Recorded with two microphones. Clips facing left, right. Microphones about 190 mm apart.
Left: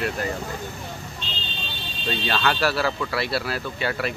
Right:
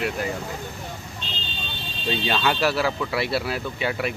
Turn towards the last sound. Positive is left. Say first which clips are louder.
# right 1 dB
turn(degrees=-15)  # may be behind; listen again after turning